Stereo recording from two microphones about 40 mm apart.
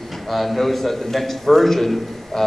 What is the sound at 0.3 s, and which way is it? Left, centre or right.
A man's voice, centre.